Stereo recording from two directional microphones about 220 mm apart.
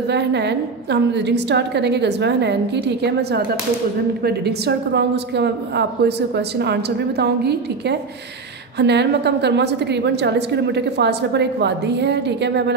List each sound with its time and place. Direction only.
0.1 s a woman's voice: 50° right (ahead or behind)